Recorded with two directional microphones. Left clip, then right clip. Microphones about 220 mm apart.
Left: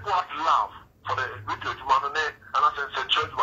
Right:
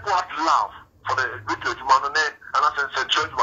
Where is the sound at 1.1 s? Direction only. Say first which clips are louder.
Right 5 dB; 25° right (ahead or behind).